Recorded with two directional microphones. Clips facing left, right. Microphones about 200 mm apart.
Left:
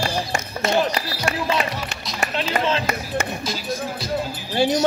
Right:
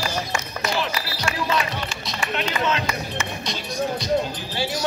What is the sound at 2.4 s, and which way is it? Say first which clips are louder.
Run: left 2 dB; 30° left (ahead or behind).